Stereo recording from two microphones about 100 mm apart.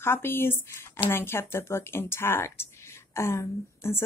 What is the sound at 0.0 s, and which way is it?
A woman's voice, 25° left (ahead or behind).